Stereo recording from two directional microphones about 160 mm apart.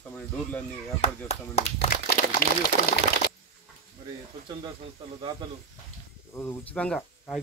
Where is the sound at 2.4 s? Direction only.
60° left (ahead or behind).